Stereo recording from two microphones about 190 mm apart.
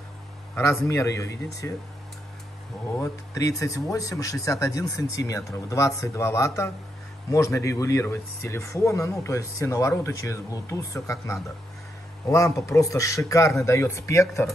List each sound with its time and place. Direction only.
0.7 s speech: 15° left (ahead or behind)
2.9 s speech: 15° left (ahead or behind)